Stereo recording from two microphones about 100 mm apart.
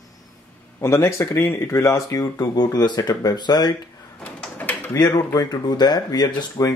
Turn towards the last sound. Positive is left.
turn(degrees=40)  # may be behind; listen again after turning